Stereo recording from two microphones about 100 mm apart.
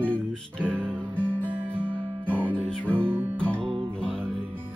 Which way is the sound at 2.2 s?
20° right (ahead or behind).